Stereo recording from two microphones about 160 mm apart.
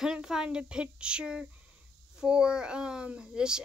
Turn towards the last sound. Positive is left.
turn(degrees=-5)  # may be behind; listen again after turning